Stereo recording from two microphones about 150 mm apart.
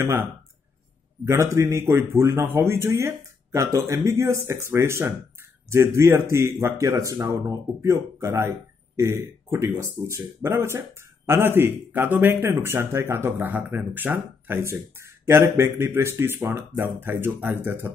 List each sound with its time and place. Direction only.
0.0 s speech: 15° right (ahead or behind)